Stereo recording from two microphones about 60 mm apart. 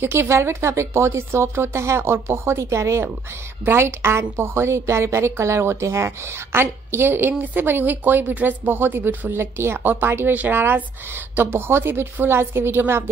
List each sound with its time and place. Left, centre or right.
0.0 s a woman's voice: right